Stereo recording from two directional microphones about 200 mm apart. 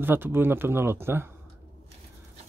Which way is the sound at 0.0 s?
10° right (ahead or behind).